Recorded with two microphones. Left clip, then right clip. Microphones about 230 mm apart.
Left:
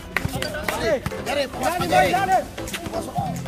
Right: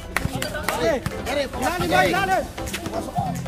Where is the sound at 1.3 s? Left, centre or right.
Left.